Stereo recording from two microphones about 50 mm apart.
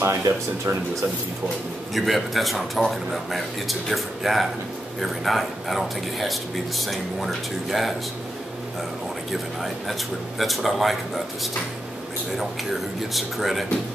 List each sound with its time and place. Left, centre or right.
0.0 s speech: right
2.0 s speech: centre
10.4 s speech: centre
13.1 s speech: centre